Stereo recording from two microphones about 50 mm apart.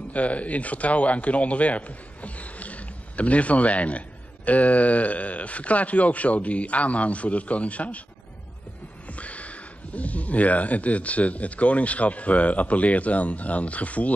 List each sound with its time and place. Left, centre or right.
0.1 s speech: left
9.1 s speech: left